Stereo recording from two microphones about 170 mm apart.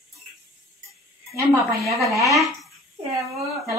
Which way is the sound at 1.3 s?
Centre (ahead or behind).